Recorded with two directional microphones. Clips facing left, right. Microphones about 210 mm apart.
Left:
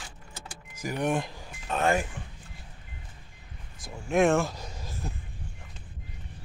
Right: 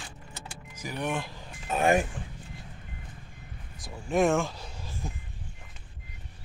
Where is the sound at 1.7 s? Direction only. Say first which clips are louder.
Right 2 dB; 10° right (ahead or behind).